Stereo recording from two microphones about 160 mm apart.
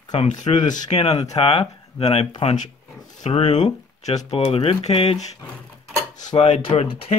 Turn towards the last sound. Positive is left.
turn(degrees=40)  # may be behind; listen again after turning